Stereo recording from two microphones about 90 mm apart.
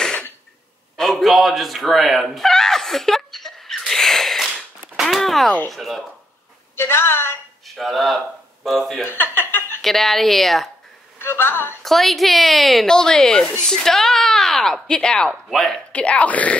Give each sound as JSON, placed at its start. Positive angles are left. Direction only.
{"t": 0.0, "sound": "cough", "side_deg": 10}
{"t": 0.9, "sound": "a sound", "side_deg": 0}
{"t": 5.7, "sound": "speech", "side_deg": 0}
{"t": 6.8, "sound": "a woman's voice", "side_deg": 25}
{"t": 7.6, "sound": "speech", "side_deg": 0}
{"t": 9.1, "sound": "a sound", "side_deg": 25}
{"t": 9.8, "sound": "speech", "side_deg": 0}
{"t": 11.1, "sound": "a woman's voice", "side_deg": 25}
{"t": 11.8, "sound": "speech", "side_deg": 0}
{"t": 15.9, "sound": "speech", "side_deg": 15}